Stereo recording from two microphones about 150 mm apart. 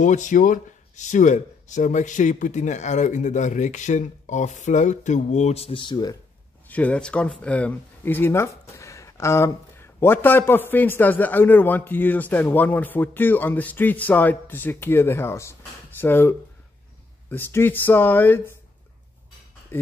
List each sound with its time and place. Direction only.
0.0 s speech: 55° left (ahead or behind); by 6.1 s 30° left (ahead or behind)
6.7 s speech: 10° left (ahead or behind)
19.7 s speech: 15° left (ahead or behind)